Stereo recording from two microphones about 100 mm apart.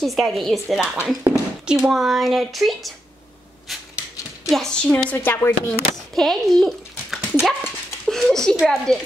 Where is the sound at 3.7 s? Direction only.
Centre (ahead or behind).